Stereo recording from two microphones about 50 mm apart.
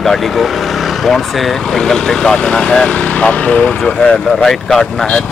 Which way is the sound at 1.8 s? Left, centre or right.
Centre.